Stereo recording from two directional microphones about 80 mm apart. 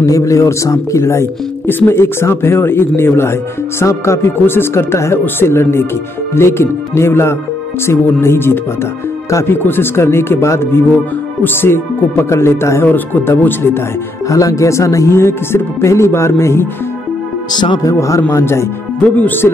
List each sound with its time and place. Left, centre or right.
0.0 s speech: left
12.8 s speech: left
14.3 s speech: left
17.5 s speech: left
17.8 s speech: left